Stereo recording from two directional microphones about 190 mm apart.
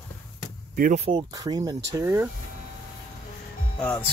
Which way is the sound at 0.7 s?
45° right (ahead or behind).